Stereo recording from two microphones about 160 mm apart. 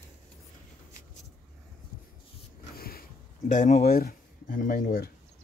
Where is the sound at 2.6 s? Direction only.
70° left (ahead or behind).